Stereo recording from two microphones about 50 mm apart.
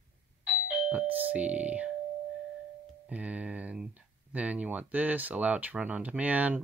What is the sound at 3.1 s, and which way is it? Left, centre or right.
Speech, right.